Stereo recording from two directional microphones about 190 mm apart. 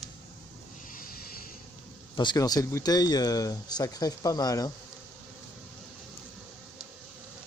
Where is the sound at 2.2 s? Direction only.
20° left (ahead or behind).